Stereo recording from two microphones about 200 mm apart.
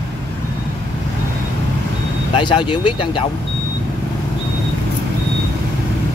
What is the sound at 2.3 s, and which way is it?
Speech, 25° left (ahead or behind).